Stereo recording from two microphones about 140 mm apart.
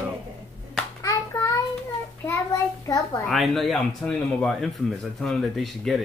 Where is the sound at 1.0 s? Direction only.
20° left (ahead or behind).